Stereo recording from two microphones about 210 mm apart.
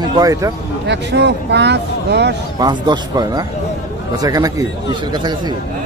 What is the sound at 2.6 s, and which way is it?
A man's voice, 20° right (ahead or behind).